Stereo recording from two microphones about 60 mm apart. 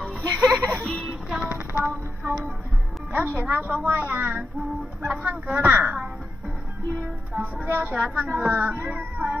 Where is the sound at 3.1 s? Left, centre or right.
Right.